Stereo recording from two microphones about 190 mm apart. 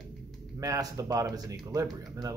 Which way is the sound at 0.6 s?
20° right (ahead or behind).